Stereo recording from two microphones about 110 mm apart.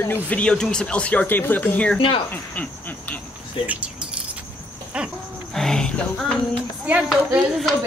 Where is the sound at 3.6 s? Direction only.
55° left (ahead or behind).